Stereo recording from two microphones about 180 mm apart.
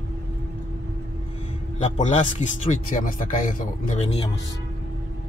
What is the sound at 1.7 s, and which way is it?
A man's voice, 40° left (ahead or behind).